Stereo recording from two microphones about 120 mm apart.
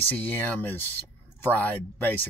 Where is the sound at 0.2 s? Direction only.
10° left (ahead or behind).